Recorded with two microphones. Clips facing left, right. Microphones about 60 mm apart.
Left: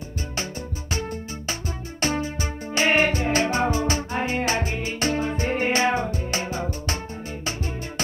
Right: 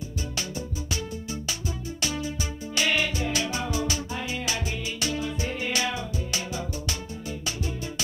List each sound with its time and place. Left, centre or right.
2.0 s music: left